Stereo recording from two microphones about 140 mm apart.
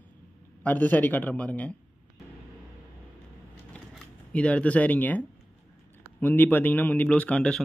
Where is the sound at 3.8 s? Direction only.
10° left (ahead or behind).